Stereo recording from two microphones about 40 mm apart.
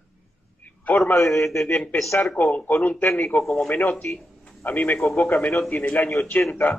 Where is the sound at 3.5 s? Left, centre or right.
Left.